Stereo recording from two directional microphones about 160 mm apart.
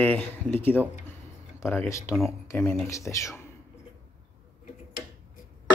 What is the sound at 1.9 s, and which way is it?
Speech, 20° left (ahead or behind).